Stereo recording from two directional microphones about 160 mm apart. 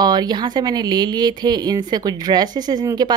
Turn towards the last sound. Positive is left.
turn(degrees=-25)  # may be behind; listen again after turning